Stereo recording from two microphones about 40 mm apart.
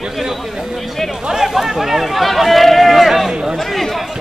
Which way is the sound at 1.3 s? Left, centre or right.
Centre.